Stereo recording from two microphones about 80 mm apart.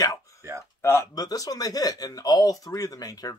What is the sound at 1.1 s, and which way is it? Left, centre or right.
Speech, left.